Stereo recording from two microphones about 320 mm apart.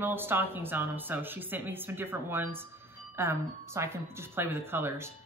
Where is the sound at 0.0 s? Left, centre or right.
Centre.